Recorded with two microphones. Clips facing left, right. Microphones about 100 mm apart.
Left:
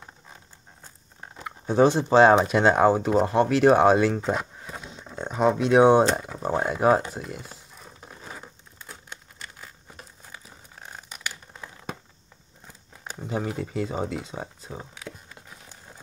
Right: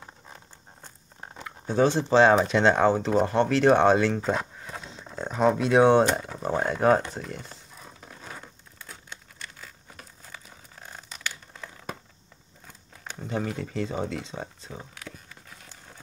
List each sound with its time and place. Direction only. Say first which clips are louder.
1.4 s speech: left 3 dB; 15° left (ahead or behind)
6.1 s speech: left 1 dB; 5° left (ahead or behind)
9.4 s crumpling: left 1 dB; 15° left (ahead or behind)
11.1 s a sound: even; 15° left (ahead or behind)
13.0 s speech: left 1 dB; 10° left (ahead or behind)